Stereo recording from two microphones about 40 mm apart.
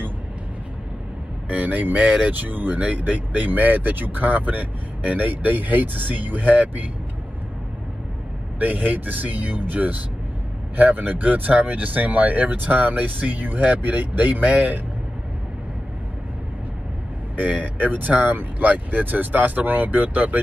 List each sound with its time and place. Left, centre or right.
1.5 s speech: right
2.4 s speech: right
8.5 s speech: right
17.4 s speech: right